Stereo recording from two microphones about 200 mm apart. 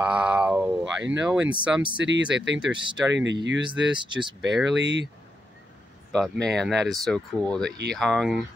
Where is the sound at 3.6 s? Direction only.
25° right (ahead or behind).